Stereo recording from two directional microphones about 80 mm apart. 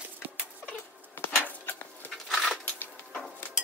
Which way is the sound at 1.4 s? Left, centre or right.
Left.